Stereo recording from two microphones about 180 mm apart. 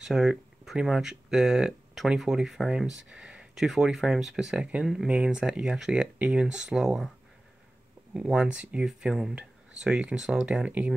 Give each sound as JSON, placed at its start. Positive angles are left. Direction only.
{"t": 0.0, "sound": "speech", "side_deg": 0}
{"t": 8.1, "sound": "speech", "side_deg": -5}